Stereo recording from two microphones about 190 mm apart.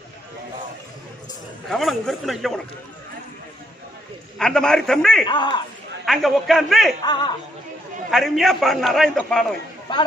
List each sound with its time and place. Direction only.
1.7 s a man's voice: centre (ahead or behind)
4.4 s a man's voice: 5° left (ahead or behind)
5.2 s speech: 25° left (ahead or behind)
6.0 s a man's voice: centre (ahead or behind)
7.1 s speech: 25° left (ahead or behind)
8.1 s a man's voice: centre (ahead or behind)